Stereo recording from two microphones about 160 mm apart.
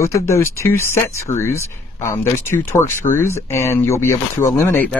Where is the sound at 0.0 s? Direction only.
15° left (ahead or behind).